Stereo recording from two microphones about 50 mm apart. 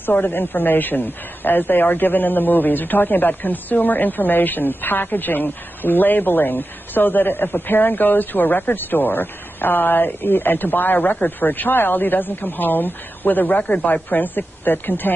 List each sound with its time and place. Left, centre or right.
0.0 s a man's voice: left
11.0 s a man's voice: left